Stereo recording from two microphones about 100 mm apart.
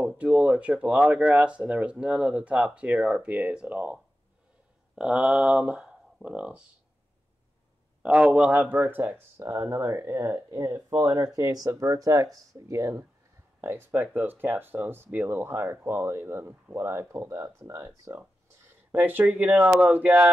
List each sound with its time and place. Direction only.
0.2 s speech: 10° right (ahead or behind)
8.0 s speech: 15° right (ahead or behind)
11.3 s speech: 35° right (ahead or behind)
13.6 s speech: 25° right (ahead or behind)
18.9 s speech: 20° right (ahead or behind)